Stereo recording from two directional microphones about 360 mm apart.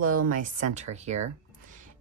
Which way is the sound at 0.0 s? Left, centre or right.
Right.